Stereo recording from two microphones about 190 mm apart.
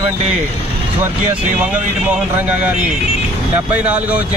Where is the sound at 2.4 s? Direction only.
10° right (ahead or behind).